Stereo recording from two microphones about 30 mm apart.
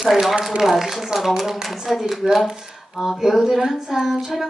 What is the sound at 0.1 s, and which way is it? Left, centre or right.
A woman's voice, centre.